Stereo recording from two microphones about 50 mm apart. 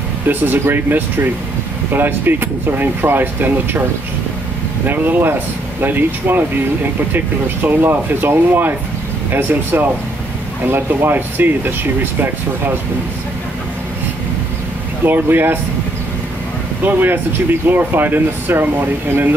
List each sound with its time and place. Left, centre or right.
0.3 s speech: right
4.8 s speech: right
15.0 s speech: right
16.8 s speech: right